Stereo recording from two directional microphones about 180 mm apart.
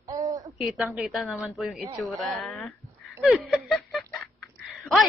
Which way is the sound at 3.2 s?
5° right (ahead or behind).